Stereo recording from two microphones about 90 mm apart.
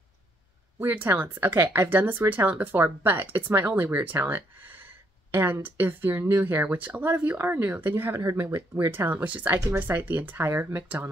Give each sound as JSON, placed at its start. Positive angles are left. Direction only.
{"t": 0.7, "sound": "speech", "side_deg": -25}